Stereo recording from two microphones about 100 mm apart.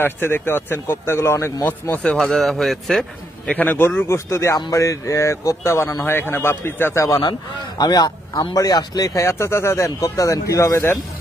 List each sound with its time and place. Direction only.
0.0 s a man's voice: 20° left (ahead or behind)
2.0 s a man's voice: 10° left (ahead or behind)
3.5 s a man's voice: 20° left (ahead or behind)
7.1 s a man's voice: 40° left (ahead or behind)